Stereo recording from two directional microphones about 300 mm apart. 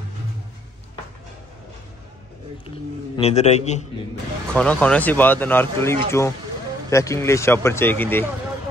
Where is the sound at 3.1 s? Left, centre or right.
Left.